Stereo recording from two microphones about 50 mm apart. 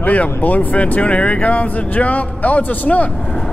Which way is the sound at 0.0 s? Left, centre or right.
Left.